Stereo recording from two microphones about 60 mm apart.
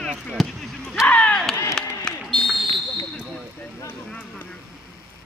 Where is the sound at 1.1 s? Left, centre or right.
Left.